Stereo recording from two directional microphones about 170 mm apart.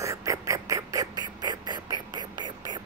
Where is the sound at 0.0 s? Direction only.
20° right (ahead or behind).